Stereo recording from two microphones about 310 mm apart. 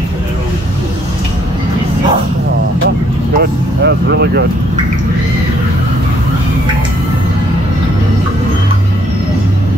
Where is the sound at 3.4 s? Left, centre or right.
Right.